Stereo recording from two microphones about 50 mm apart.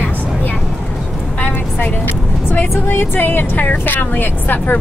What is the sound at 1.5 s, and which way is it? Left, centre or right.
Speech, left.